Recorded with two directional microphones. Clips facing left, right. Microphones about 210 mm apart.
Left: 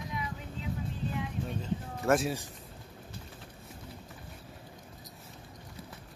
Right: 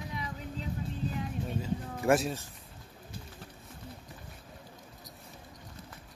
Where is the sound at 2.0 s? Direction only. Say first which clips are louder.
Right 1 dB; 15° right (ahead or behind).